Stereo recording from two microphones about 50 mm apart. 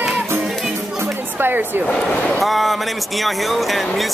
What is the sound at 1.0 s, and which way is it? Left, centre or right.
Music, right.